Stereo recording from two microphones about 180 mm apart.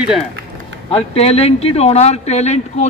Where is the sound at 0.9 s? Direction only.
35° left (ahead or behind).